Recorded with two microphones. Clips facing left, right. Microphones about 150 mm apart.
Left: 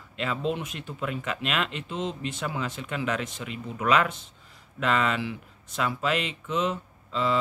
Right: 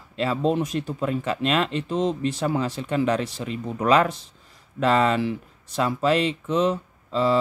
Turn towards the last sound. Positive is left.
turn(degrees=-35)  # may be behind; listen again after turning